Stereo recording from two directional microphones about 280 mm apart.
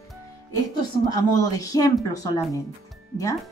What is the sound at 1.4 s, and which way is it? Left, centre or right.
Speech, centre.